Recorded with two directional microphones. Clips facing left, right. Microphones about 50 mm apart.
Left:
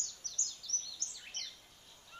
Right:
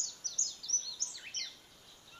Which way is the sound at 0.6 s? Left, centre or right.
Right.